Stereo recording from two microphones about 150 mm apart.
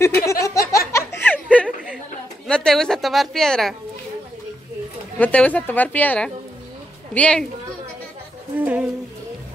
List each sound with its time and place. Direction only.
0.0 s a sound: 20° left (ahead or behind)
2.4 s a woman's voice: 5° left (ahead or behind)
5.2 s a woman's voice: 10° left (ahead or behind)
8.5 s a woman's voice: 10° right (ahead or behind)